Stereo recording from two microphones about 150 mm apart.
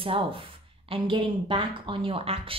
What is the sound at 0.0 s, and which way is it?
Speech, 35° right (ahead or behind).